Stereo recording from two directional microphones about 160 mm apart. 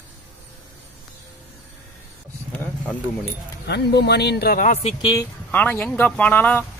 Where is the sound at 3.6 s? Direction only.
90° left; by 4.7 s 70° left (ahead or behind).